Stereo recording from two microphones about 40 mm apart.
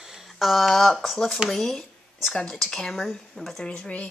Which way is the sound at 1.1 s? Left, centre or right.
Centre.